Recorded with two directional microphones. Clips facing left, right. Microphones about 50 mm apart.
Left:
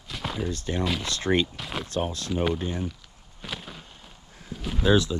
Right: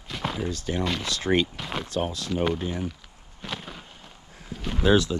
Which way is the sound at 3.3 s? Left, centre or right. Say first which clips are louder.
Right 2 dB; centre.